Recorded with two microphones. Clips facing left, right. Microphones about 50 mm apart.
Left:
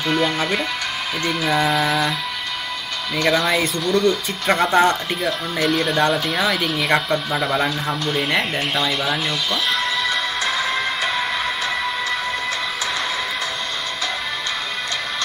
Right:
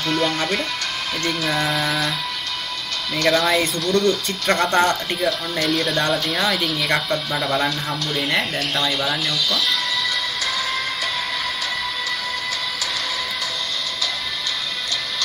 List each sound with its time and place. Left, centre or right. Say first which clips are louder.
0.0 s speech: left 1 dB; centre
3.2 s speech: even; centre
9.5 s music: left 1 dB; left